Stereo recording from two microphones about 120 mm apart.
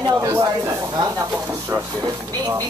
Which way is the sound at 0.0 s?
30° right (ahead or behind).